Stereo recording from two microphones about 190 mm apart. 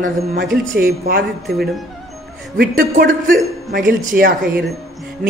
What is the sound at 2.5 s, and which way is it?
A man's voice, 50° right (ahead or behind).